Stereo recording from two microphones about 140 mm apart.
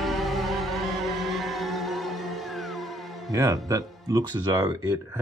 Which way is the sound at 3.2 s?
25° right (ahead or behind).